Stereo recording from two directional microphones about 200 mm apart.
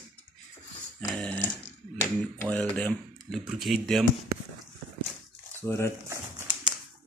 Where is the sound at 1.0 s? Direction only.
5° left (ahead or behind).